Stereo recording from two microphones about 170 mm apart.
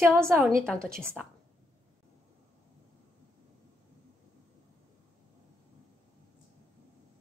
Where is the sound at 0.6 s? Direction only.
5° left (ahead or behind).